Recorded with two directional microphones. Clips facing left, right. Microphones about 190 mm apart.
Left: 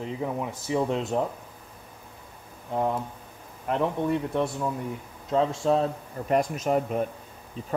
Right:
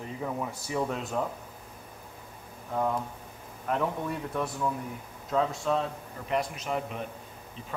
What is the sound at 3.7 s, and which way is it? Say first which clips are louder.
Speech: left 5 dB; 25° left (ahead or behind).